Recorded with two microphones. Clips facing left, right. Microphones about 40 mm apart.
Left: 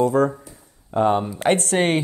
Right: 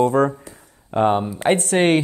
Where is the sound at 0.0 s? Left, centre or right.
Right.